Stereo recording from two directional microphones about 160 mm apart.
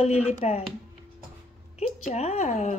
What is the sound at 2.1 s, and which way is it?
Speech, 45° left (ahead or behind).